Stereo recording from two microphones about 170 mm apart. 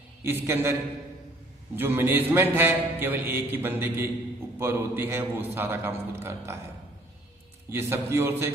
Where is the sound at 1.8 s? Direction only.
10° right (ahead or behind).